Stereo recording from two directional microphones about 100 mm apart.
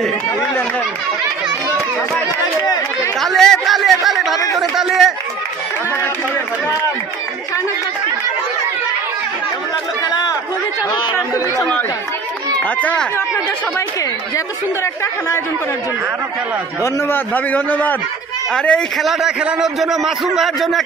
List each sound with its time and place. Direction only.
2.6 s chatter: 40° left (ahead or behind)
3.2 s chatter: 5° left (ahead or behind)
4.6 s a sound: centre (ahead or behind)
11.1 s chatter: 35° left (ahead or behind)
12.6 s a man's voice: 15° left (ahead or behind)
14.3 s speech: 30° left (ahead or behind)
16.8 s a man's voice: 20° left (ahead or behind); by 20.8 s centre (ahead or behind)